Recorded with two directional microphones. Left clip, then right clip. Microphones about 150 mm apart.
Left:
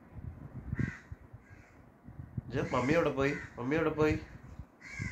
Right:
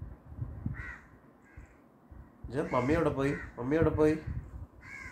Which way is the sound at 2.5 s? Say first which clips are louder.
Right 1 dB; 15° left (ahead or behind).